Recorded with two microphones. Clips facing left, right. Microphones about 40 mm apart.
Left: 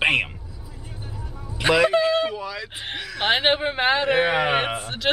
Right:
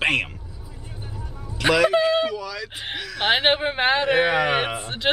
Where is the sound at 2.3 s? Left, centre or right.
Left.